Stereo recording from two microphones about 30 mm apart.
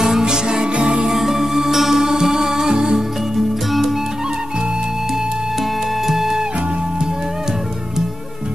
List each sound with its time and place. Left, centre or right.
0.2 s music: right
0.7 s music: right
1.0 s music: centre
3.3 s music: centre
6.0 s music: centre